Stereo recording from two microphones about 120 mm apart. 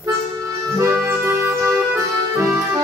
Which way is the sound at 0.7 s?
25° right (ahead or behind).